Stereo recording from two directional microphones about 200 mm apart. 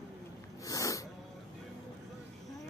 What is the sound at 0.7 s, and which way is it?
Snort, 15° left (ahead or behind).